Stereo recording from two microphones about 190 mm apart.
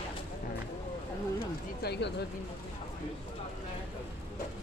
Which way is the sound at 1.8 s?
60° left (ahead or behind).